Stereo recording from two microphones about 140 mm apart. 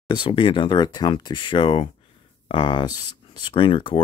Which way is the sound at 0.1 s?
35° left (ahead or behind).